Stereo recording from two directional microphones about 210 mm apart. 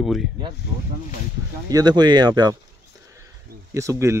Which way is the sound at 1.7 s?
20° right (ahead or behind).